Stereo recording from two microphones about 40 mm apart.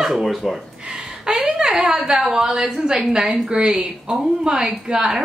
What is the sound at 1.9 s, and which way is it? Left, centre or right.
Speech, centre.